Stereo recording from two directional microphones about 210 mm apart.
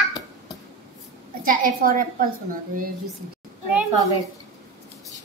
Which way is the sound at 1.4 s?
40° right (ahead or behind).